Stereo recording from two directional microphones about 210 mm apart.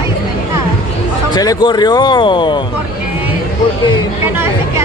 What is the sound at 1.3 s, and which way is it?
A man's voice, 20° left (ahead or behind).